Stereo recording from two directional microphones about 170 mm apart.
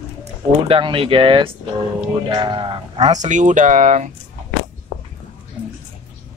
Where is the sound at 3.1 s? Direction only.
45° right (ahead or behind).